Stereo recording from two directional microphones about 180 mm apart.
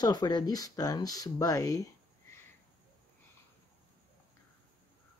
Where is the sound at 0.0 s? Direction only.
20° left (ahead or behind).